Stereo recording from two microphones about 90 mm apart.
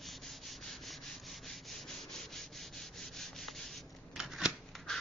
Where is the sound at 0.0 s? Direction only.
Centre (ahead or behind).